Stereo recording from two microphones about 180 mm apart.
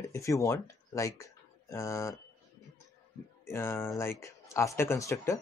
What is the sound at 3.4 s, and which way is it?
Speech, 15° left (ahead or behind).